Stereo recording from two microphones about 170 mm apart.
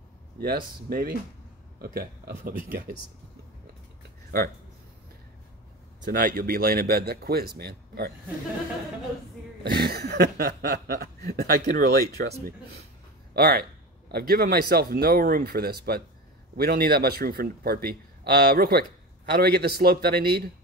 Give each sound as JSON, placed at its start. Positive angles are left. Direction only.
{"t": 0.4, "sound": "speech", "side_deg": -60}
{"t": 6.0, "sound": "speech", "side_deg": -55}
{"t": 9.6, "sound": "a man's voice", "side_deg": -70}